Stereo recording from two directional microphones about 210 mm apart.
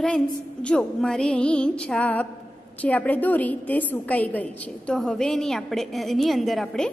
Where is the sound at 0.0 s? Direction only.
5° left (ahead or behind).